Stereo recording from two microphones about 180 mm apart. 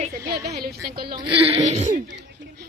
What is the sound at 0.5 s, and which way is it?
Speech, 60° right (ahead or behind).